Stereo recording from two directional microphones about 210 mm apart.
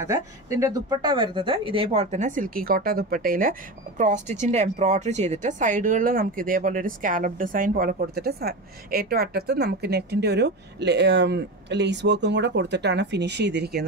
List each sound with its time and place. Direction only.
0.0 s speech: 15° right (ahead or behind); by 13.8 s 50° right (ahead or behind)